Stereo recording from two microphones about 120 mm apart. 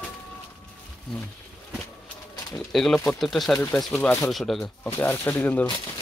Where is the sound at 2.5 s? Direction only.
Centre (ahead or behind).